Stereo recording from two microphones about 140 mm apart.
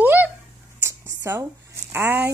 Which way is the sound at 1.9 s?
20° right (ahead or behind).